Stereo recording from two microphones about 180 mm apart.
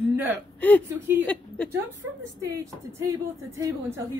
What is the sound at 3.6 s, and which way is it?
Speech, 15° right (ahead or behind).